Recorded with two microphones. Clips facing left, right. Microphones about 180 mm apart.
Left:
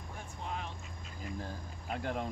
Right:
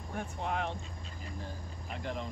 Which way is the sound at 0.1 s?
65° right (ahead or behind).